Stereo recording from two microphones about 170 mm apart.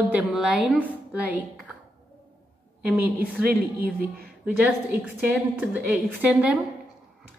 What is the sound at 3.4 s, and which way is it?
Speech, 60° right (ahead or behind).